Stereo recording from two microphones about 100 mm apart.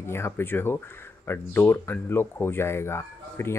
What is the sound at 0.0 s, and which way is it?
Speech, 25° left (ahead or behind).